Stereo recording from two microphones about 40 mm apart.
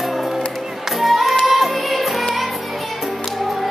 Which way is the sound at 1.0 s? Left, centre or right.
Centre.